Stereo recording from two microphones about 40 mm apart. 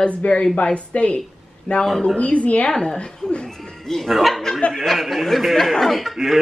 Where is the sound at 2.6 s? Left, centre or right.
Left.